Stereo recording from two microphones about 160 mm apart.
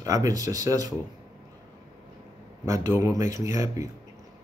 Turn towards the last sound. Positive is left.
turn(degrees=-20)  # may be behind; listen again after turning